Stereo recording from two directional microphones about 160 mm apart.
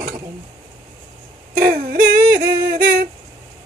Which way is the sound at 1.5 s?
60° right (ahead or behind).